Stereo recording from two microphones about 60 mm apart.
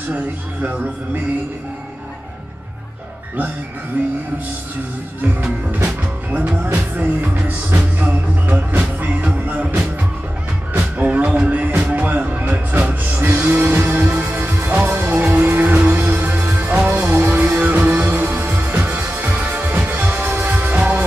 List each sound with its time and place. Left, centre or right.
0.1 s music: right
6.3 s music: right
11.0 s music: right